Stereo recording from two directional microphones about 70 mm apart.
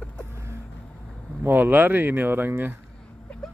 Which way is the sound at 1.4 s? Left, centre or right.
Right.